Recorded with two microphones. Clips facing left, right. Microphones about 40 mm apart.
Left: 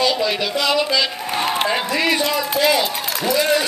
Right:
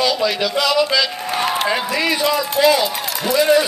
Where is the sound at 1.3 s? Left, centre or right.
Centre.